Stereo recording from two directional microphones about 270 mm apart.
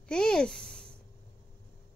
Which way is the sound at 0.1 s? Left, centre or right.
Centre.